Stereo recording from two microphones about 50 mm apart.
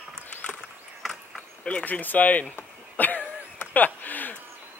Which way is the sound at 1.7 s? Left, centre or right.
Left.